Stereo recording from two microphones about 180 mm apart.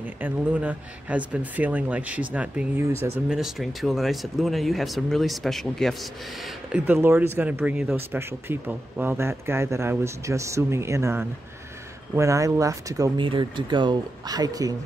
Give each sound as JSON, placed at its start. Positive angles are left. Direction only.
{"t": 0.0, "sound": "speech", "side_deg": -10}